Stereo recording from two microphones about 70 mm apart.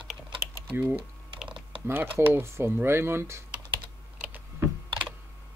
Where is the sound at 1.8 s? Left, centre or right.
Right.